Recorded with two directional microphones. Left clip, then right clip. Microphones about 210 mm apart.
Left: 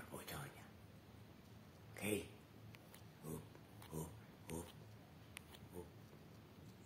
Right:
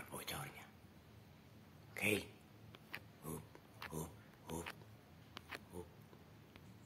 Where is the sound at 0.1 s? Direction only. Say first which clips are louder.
Right 5 dB; 10° right (ahead or behind).